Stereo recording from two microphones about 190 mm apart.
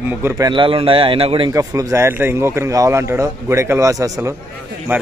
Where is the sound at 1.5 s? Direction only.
15° right (ahead or behind).